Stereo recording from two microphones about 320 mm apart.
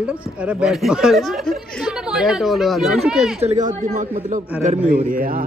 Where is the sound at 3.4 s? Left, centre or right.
Right.